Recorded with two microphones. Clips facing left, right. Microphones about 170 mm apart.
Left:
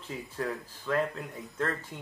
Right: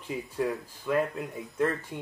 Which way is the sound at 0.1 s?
15° right (ahead or behind).